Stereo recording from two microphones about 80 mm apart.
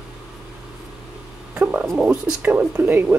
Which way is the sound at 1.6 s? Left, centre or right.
Centre.